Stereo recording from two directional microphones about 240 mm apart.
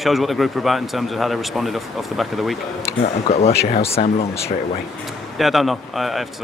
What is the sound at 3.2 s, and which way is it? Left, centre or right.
Speech, left.